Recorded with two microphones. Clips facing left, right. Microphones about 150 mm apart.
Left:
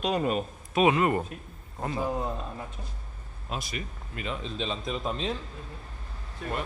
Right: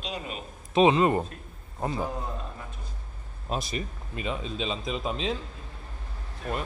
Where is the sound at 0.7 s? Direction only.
25° right (ahead or behind).